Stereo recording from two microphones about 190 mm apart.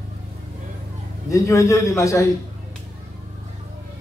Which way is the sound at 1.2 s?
15° left (ahead or behind).